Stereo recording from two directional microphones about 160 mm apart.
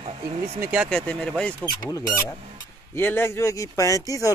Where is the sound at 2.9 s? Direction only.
15° left (ahead or behind).